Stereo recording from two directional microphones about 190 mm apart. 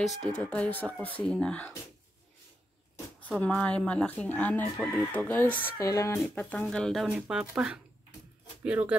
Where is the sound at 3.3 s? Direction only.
5° left (ahead or behind).